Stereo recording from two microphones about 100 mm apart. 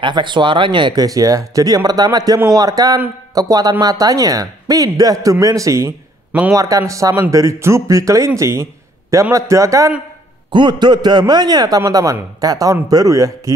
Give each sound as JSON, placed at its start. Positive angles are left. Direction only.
{"t": 0.0, "sound": "a man's voice", "side_deg": -50}
{"t": 1.0, "sound": "speech", "side_deg": -35}
{"t": 10.5, "sound": "a man's voice", "side_deg": -50}